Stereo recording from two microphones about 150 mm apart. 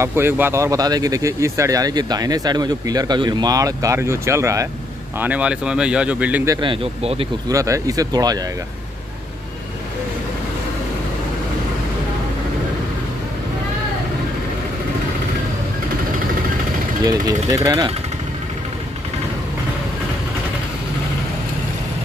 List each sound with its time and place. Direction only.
0.0 s speech: 15° right (ahead or behind)
5.2 s speech: 10° right (ahead or behind)
6.5 s speech: 35° right (ahead or behind)
7.4 s speech: 20° right (ahead or behind)
17.5 s speech: 20° right (ahead or behind)